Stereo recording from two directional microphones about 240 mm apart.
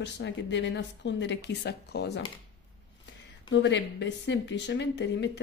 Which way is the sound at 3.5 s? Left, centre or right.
Left.